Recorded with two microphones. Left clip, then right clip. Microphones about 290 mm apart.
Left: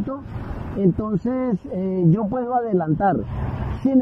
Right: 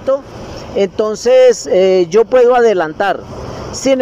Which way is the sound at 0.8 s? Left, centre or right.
Right.